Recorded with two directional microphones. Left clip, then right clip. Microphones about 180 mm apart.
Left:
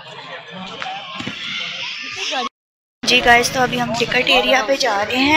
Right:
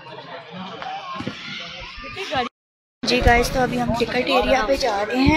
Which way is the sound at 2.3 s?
25° right (ahead or behind).